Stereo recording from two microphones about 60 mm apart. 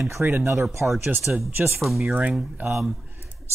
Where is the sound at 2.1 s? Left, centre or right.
Right.